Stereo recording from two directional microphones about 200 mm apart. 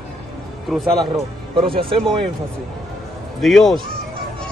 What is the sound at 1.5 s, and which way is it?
Speech, 25° right (ahead or behind).